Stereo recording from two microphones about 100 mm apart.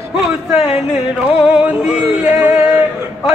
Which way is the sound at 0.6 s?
5° right (ahead or behind).